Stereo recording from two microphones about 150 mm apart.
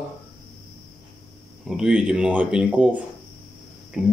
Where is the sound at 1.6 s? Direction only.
5° right (ahead or behind).